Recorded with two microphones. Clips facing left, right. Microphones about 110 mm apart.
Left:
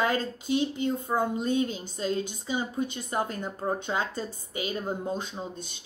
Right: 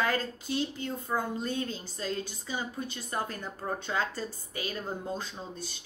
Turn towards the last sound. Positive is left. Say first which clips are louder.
# left 4 dB
turn(degrees=20)  # may be behind; listen again after turning